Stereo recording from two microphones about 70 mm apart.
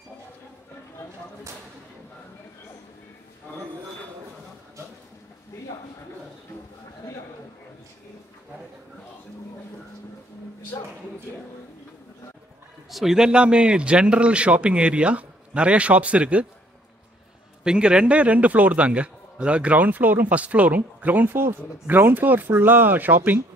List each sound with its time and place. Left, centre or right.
10.7 s a sound: left
12.9 s a man's voice: centre
17.6 s a man's voice: centre